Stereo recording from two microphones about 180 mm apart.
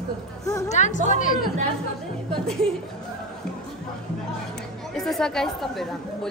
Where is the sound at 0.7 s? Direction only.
40° left (ahead or behind).